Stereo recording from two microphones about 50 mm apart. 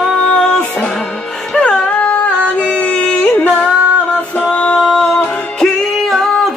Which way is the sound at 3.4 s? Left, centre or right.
Left.